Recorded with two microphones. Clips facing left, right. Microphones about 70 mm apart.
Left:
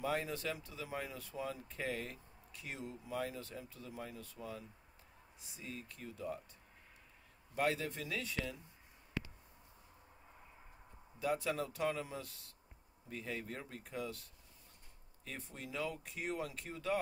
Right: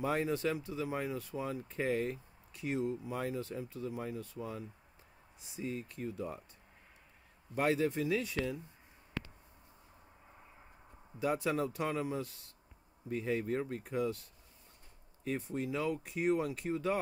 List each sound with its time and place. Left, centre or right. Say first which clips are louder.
0.0 s speech: right 5 dB; right
7.5 s speech: right 5 dB; right
11.1 s speech: right 4 dB; right
15.2 s speech: right 12 dB; right